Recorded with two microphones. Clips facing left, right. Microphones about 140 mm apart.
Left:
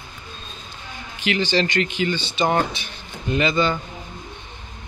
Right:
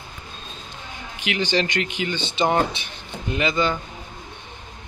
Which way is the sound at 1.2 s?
15° right (ahead or behind).